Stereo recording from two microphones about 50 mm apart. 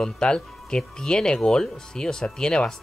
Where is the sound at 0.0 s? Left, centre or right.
Centre.